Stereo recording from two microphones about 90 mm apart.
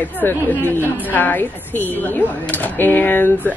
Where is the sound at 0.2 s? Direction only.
20° left (ahead or behind).